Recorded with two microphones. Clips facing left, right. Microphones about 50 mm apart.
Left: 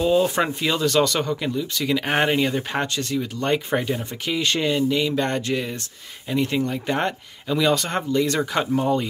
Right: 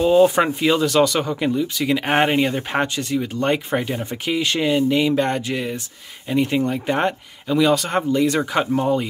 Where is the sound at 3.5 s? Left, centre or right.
Centre.